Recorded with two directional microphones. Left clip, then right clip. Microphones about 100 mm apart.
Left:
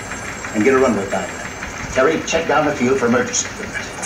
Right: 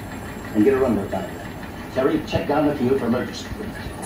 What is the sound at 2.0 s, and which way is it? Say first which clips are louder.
Speech: left 5 dB; 25° left (ahead or behind).